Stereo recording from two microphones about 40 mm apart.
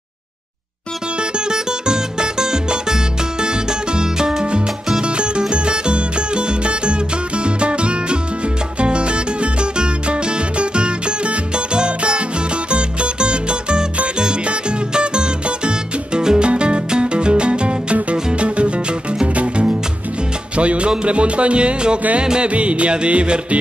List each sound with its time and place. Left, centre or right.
1.2 s music: right
20.5 s speech: right
22.2 s music: right
22.5 s music: right